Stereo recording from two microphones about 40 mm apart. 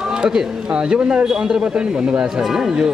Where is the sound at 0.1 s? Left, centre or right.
Centre.